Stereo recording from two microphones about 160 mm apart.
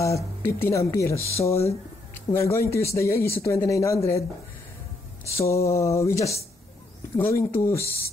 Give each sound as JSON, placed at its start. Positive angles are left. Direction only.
{"t": 0.0, "sound": "speech", "side_deg": 20}
{"t": 5.2, "sound": "speech", "side_deg": 20}